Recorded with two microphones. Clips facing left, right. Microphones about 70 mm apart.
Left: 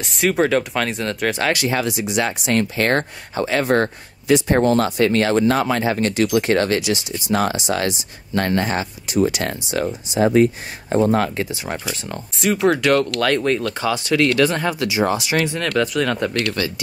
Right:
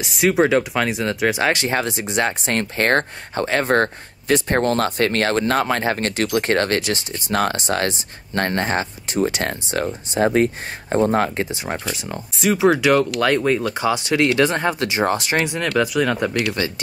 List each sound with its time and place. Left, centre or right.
0.0 s speech: centre
1.5 s speech: right
11.1 s speech: right
11.9 s speech: centre; by 14.9 s right
14.9 s speech: right
15.4 s speech: centre